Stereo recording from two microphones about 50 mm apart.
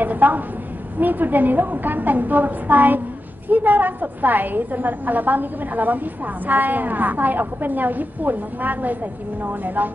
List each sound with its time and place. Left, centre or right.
0.0 s a woman's voice: right